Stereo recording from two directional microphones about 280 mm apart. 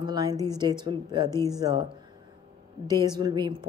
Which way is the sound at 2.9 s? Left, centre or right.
Centre.